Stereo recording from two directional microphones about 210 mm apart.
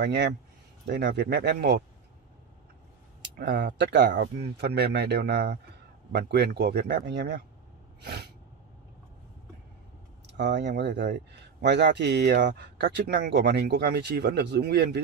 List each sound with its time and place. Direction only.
0.0 s speech: 55° right (ahead or behind)
3.2 s speech: 55° right (ahead or behind)
8.0 s sneeze: 55° right (ahead or behind)
10.2 s a sound: 55° right (ahead or behind)
10.8 s speech: 55° right (ahead or behind)